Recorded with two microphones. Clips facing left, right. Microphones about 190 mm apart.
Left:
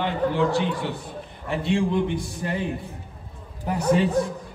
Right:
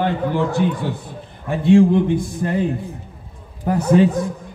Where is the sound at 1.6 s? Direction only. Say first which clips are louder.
Right 11 dB; 50° right (ahead or behind).